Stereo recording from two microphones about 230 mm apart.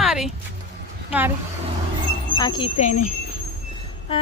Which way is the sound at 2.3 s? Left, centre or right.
Centre.